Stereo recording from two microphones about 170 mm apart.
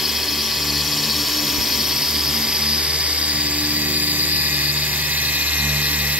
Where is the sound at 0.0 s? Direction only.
Centre (ahead or behind).